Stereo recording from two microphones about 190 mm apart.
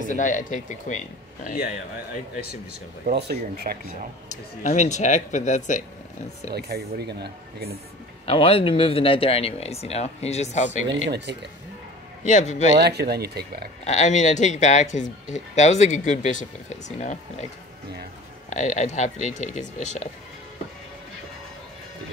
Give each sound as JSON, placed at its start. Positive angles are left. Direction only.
{"t": 0.0, "sound": "speech", "side_deg": 40}
{"t": 3.1, "sound": "speech", "side_deg": -55}
{"t": 3.8, "sound": "speech", "side_deg": 40}
{"t": 6.5, "sound": "speech", "side_deg": -55}
{"t": 8.3, "sound": "speech", "side_deg": 30}
{"t": 11.1, "sound": "speech", "side_deg": -65}
{"t": 12.3, "sound": "speech", "side_deg": 40}
{"t": 12.7, "sound": "speech", "side_deg": -60}
{"t": 13.8, "sound": "speech", "side_deg": 35}
{"t": 18.5, "sound": "speech", "side_deg": 40}